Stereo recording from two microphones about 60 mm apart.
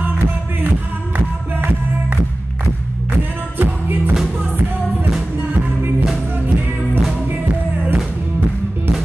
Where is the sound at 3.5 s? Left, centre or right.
Right.